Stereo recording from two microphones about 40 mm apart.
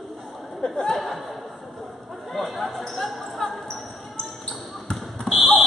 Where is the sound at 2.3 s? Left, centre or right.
Centre.